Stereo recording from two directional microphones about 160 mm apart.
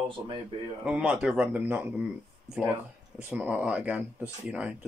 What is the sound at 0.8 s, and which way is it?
Speech, 5° right (ahead or behind).